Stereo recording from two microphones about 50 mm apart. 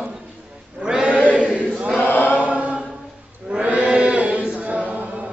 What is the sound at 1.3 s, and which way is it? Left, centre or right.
Chant, right.